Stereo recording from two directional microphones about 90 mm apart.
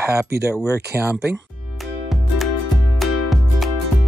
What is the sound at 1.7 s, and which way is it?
Music, centre (ahead or behind).